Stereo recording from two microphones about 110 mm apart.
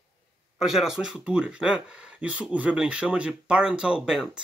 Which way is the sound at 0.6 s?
5° right (ahead or behind).